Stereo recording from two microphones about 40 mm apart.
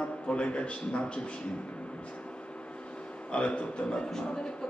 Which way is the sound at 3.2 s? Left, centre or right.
Left.